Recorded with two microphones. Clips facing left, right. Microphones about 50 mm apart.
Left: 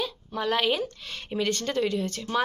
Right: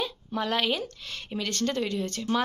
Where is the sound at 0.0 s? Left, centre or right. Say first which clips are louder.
Left 1 dB; centre.